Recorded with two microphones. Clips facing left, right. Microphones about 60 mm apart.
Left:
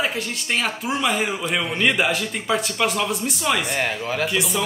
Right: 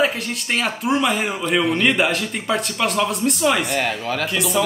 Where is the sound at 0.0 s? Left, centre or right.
Centre.